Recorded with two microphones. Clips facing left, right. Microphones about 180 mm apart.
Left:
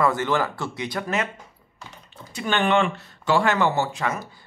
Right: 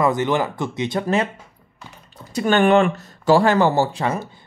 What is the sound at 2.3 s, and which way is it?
Speech, 45° right (ahead or behind).